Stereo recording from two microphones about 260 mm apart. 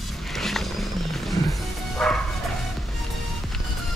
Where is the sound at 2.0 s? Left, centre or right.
Centre.